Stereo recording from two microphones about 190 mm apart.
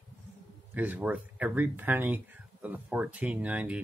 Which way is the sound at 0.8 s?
10° right (ahead or behind).